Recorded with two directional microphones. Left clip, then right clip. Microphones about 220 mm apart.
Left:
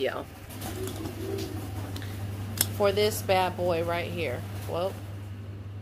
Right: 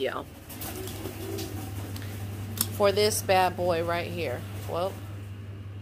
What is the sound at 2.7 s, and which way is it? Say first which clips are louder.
Speech: right 2 dB; 25° right (ahead or behind).